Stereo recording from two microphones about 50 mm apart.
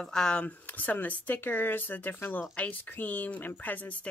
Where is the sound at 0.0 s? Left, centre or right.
Centre.